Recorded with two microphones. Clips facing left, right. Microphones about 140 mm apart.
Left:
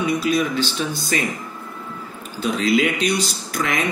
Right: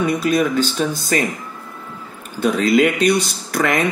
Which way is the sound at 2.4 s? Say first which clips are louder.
Right 4 dB; 50° right (ahead or behind).